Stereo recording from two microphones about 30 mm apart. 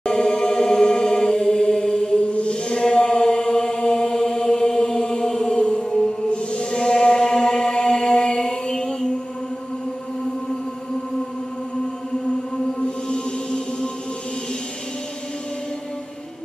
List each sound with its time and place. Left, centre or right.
0.0 s chant: left
1.5 s mantra: left
2.7 s chant: left
5.2 s mantra: left
6.3 s chant: left
6.8 s chant: left
13.1 s music: left